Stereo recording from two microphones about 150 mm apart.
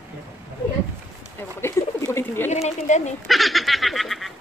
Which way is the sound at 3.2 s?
Centre (ahead or behind).